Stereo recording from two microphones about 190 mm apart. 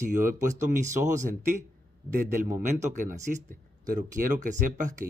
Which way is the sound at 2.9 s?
40° right (ahead or behind).